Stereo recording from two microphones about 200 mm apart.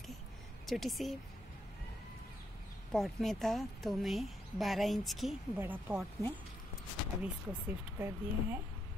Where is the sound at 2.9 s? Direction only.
Centre (ahead or behind).